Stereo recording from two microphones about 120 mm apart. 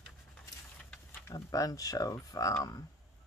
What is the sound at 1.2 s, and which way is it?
Speech, 30° left (ahead or behind).